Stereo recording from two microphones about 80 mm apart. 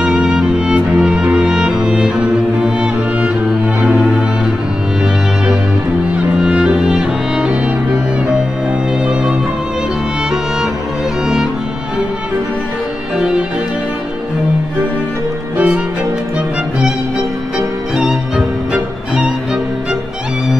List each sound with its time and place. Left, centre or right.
0.0 s music: centre
6.3 s music: centre
15.5 s music: centre
18.7 s music: centre